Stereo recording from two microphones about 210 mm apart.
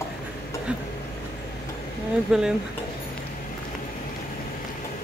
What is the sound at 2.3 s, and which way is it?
Speech, 5° right (ahead or behind).